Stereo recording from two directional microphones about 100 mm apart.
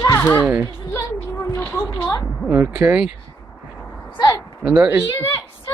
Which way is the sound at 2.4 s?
15° right (ahead or behind).